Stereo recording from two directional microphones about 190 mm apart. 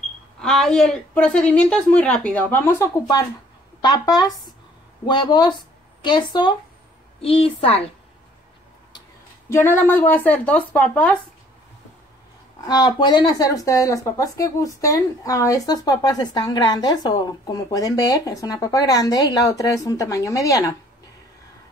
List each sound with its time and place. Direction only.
0.4 s a woman's voice: centre (ahead or behind); by 7.9 s 30° left (ahead or behind)
9.5 s speech: 15° left (ahead or behind)
12.6 s speech: 20° left (ahead or behind)